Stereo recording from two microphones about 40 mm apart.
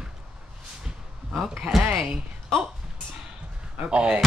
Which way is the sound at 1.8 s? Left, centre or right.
Centre.